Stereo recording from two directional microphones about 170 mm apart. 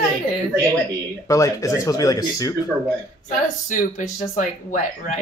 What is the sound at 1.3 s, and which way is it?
Speech, 20° left (ahead or behind).